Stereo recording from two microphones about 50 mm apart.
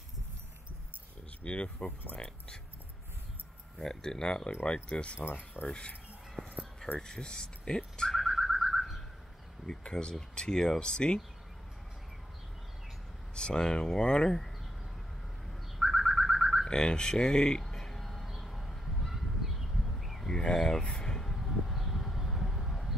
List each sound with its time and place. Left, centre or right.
1.4 s speech: left
3.7 s speech: centre
5.2 s speech: left
5.7 s speech: left
7.0 s speech: centre
8.1 s car alarm: centre
9.7 s speech: centre
13.3 s speech: centre
15.8 s a sound: centre
16.6 s car alarm: centre
18.2 s a sound: centre
20.2 s a sound: centre